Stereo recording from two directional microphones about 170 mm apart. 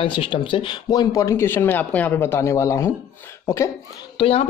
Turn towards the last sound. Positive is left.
turn(degrees=35)  # may be behind; listen again after turning